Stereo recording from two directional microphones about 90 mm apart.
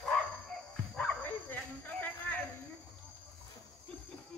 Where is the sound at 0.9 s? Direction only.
15° left (ahead or behind).